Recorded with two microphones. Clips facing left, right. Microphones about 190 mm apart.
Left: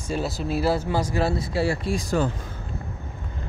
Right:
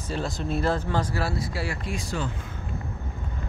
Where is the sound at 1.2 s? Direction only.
25° left (ahead or behind); by 2.3 s 40° left (ahead or behind).